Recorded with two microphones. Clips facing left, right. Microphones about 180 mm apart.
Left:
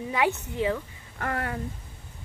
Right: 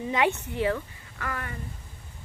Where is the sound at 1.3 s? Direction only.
75° left (ahead or behind).